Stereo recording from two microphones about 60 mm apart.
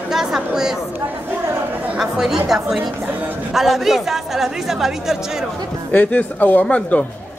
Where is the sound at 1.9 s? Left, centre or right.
Centre.